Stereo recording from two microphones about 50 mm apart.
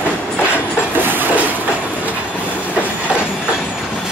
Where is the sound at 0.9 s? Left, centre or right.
Right.